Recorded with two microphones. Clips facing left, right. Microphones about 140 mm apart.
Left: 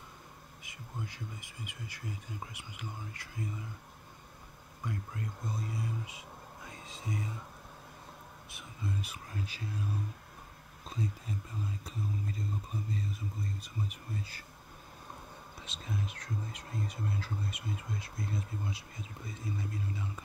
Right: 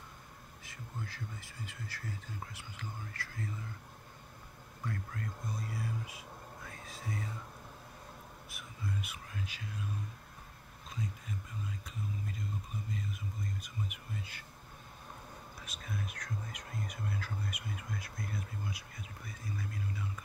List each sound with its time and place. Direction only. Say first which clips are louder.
0.7 s speech: left 1 dB; 15° left (ahead or behind)
4.8 s speech: left 1 dB; 20° left (ahead or behind)
8.5 s speech: left 2 dB; 30° left (ahead or behind)
10.9 s speech: left 4 dB; 35° left (ahead or behind)
15.6 s speech: left 3 dB; 25° left (ahead or behind)